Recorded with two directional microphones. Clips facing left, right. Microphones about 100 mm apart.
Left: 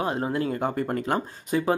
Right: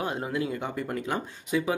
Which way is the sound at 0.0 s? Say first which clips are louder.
Left 4 dB; 35° left (ahead or behind).